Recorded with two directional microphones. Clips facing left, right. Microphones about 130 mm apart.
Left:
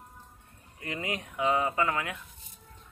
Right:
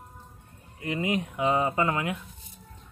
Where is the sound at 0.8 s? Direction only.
20° right (ahead or behind).